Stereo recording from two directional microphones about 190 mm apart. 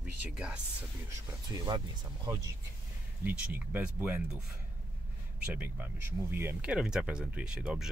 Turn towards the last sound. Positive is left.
turn(degrees=-5)  # may be behind; listen again after turning